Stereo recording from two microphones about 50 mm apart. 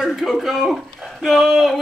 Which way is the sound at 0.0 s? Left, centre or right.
Centre.